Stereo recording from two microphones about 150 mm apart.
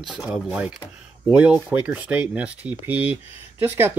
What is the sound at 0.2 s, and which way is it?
Speech, 5° right (ahead or behind).